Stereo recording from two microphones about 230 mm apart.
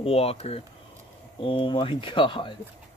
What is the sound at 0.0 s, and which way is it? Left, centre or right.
Speech, left.